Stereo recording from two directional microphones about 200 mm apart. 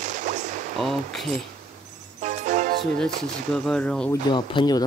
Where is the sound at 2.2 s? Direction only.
40° right (ahead or behind).